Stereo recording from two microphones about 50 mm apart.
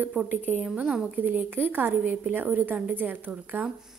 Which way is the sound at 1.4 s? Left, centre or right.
Right.